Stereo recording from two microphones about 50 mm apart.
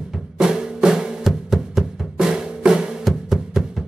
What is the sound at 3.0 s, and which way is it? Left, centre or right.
Music, centre.